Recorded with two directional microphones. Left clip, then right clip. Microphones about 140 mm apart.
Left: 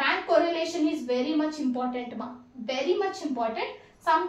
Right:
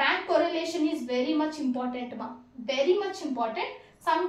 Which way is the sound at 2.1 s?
25° left (ahead or behind).